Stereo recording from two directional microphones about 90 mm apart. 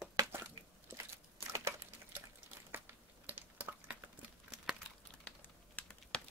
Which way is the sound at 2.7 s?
20° right (ahead or behind).